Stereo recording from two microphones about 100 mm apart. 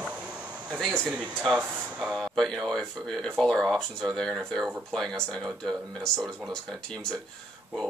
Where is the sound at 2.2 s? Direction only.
5° left (ahead or behind).